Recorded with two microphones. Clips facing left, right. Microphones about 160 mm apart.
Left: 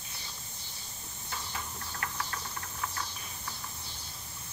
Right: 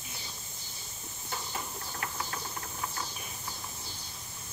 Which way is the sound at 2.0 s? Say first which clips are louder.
Even; 15° right (ahead or behind).